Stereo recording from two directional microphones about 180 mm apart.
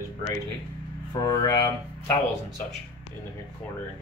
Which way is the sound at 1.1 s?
20° left (ahead or behind).